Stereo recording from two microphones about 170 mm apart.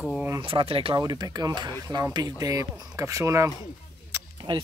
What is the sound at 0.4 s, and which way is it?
Speech, 30° right (ahead or behind).